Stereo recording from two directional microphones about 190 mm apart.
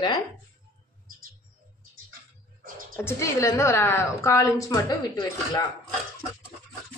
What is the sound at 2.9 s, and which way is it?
A woman's voice, 15° left (ahead or behind).